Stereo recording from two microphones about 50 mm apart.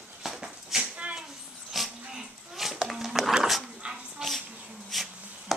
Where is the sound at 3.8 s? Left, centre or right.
Right.